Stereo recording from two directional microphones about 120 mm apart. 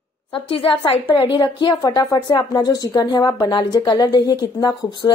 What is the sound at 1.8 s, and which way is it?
A woman's voice, 30° left (ahead or behind).